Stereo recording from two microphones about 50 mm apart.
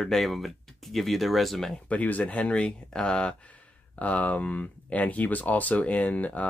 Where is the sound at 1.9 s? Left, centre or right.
Left.